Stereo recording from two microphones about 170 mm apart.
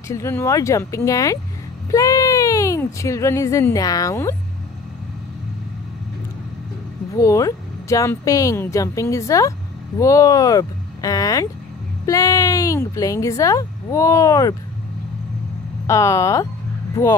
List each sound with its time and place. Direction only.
0.1 s speech: 15° left (ahead or behind)
7.2 s speech: 20° left (ahead or behind)
15.9 s speech: 15° left (ahead or behind)